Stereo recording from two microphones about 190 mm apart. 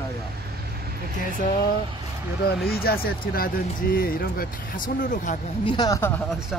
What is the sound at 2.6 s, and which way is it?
Speech, 55° left (ahead or behind).